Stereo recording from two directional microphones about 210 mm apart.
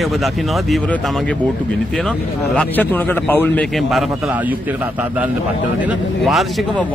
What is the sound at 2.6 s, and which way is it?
A man's voice, 10° left (ahead or behind).